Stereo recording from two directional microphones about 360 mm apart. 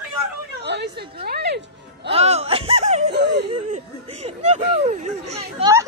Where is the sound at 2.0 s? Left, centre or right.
Centre.